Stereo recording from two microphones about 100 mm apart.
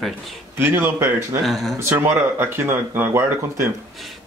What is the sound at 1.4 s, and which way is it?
Speech, centre (ahead or behind).